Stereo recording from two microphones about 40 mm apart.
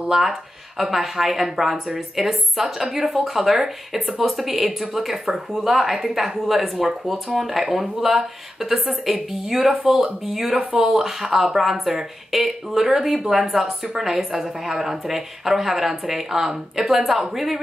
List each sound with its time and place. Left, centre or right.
0.1 s speech: centre
10.6 s speech: right
10.9 s speech: centre